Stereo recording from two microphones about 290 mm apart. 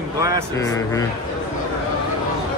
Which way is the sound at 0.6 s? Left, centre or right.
Centre.